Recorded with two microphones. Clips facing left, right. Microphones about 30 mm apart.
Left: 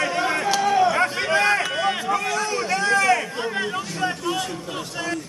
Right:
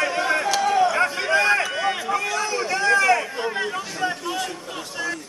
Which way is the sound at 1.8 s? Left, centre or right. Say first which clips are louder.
Left 1 dB; centre.